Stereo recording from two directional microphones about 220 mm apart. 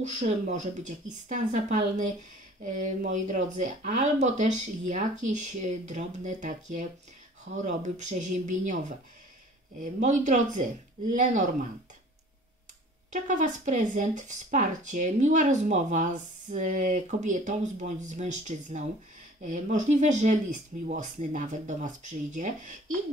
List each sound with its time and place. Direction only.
0.0 s speech: 30° right (ahead or behind)
13.1 s speech: 35° right (ahead or behind)